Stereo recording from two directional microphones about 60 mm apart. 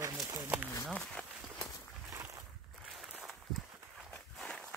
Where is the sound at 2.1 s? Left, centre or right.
Right.